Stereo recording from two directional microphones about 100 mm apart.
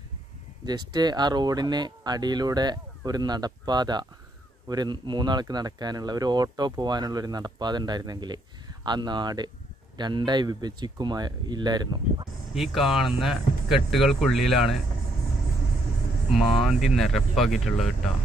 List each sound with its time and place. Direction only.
0.7 s speech: 45° right (ahead or behind)
12.5 s speech: centre (ahead or behind)
16.3 s speech: centre (ahead or behind)